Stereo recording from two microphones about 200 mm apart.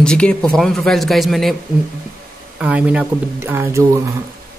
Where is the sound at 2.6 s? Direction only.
5° right (ahead or behind).